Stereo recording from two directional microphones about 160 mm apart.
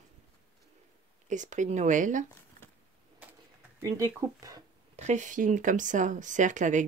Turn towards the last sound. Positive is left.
turn(degrees=-50)  # may be behind; listen again after turning